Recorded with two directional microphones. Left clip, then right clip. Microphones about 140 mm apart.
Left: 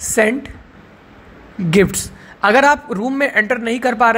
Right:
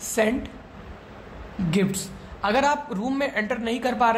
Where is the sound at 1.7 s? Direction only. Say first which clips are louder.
Left 12 dB; 45° left (ahead or behind).